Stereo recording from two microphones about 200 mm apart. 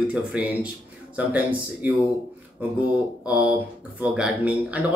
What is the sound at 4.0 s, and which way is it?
Speech, 5° right (ahead or behind).